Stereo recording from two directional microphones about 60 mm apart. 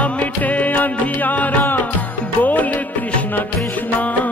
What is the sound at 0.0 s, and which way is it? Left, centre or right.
Music, left.